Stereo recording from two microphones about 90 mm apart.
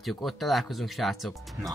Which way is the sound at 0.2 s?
Centre (ahead or behind).